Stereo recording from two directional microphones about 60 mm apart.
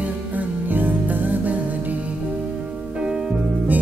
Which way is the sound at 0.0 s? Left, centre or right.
Right.